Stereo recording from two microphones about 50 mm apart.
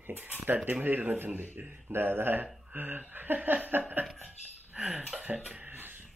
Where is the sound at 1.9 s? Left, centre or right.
Right.